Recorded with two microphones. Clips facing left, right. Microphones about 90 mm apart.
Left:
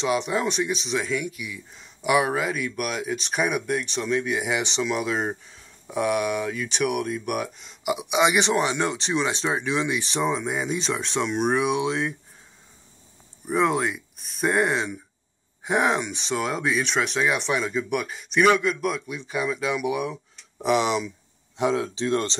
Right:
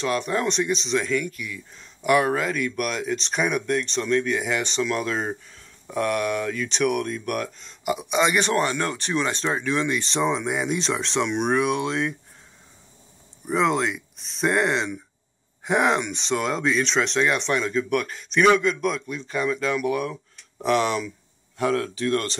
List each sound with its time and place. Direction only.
0.0 s speech: 15° left (ahead or behind)
13.5 s speech: 5° left (ahead or behind); by 22.4 s 25° left (ahead or behind)